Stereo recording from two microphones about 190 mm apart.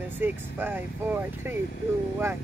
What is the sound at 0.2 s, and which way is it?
Speech, 10° right (ahead or behind).